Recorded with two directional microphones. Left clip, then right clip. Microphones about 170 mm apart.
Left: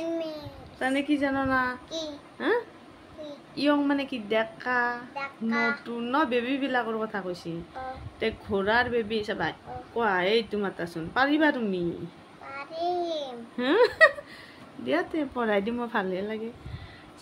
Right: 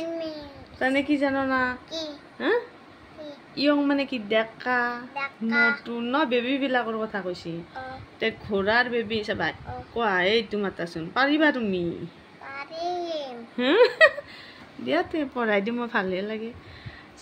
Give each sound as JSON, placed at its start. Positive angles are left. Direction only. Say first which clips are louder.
{"t": 0.0, "sound": "babbling", "louder": "even", "side_deg": 0}
{"t": 0.7, "sound": "speech", "louder": "right 3 dB", "side_deg": -20}
{"t": 1.9, "sound": "child singing", "louder": "right 1 dB", "side_deg": 30}
{"t": 2.3, "sound": "speech", "louder": "right 2 dB", "side_deg": -20}
{"t": 5.1, "sound": "music", "louder": "right 4 dB", "side_deg": 5}
{"t": 5.9, "sound": "a woman's voice", "louder": "right 2 dB", "side_deg": -20}
{"t": 12.9, "sound": "babbling", "louder": "even", "side_deg": 30}
{"t": 13.2, "sound": "a woman's voice", "louder": "right 3 dB", "side_deg": -15}
{"t": 15.3, "sound": "a woman's voice", "louder": "right 2 dB", "side_deg": -5}